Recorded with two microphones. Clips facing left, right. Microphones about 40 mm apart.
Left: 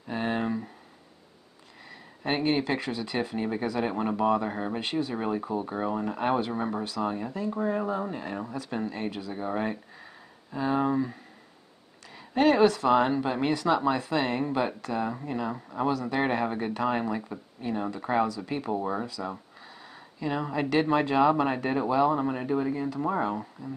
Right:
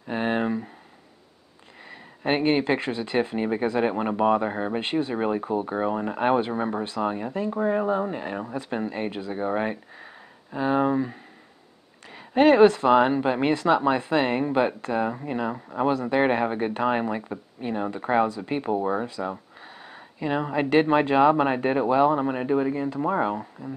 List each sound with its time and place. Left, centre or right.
0.0 s a sound: right
1.9 s speech: right
12.4 s speech: right
19.0 s speech: right